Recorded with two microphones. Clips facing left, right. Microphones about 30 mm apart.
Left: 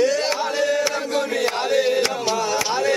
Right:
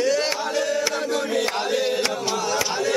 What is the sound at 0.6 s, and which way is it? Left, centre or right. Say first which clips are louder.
Chant: left 2 dB; centre.